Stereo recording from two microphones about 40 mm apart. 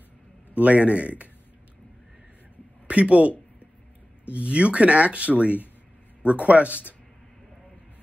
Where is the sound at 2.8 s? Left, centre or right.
Right.